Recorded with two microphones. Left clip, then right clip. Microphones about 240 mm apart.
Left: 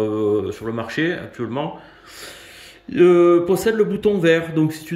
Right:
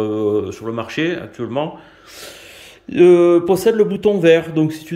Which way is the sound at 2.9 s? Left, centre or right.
Centre.